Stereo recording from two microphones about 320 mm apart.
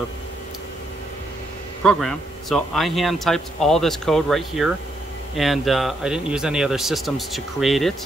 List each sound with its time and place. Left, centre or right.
1.8 s speech: centre